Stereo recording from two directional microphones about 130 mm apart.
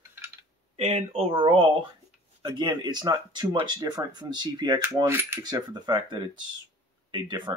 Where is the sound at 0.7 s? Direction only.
50° right (ahead or behind).